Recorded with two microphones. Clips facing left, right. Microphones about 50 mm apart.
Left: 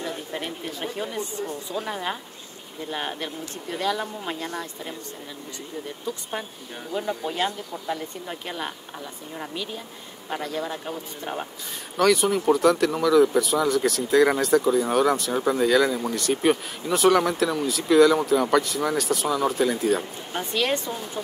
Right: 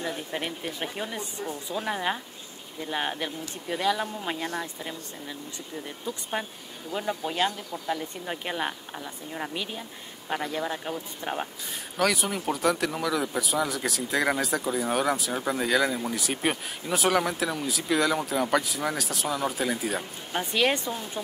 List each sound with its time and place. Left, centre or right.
0.0 s a sound: centre
1.1 s speech: centre
6.1 s speech: centre
6.9 s speech: centre
8.3 s speech: centre